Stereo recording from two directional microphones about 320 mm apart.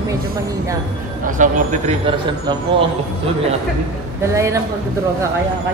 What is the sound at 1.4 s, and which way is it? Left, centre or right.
Speech, right.